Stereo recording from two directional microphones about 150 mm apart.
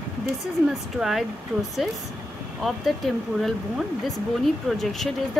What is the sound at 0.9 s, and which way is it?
Speech, centre (ahead or behind).